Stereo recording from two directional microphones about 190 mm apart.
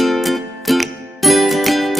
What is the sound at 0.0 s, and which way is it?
Music, centre (ahead or behind).